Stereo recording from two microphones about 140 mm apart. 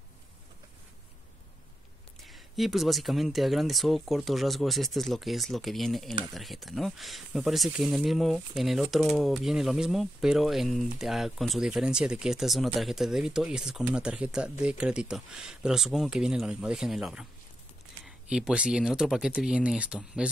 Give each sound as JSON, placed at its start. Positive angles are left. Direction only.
{"t": 2.2, "sound": "speech", "side_deg": 0}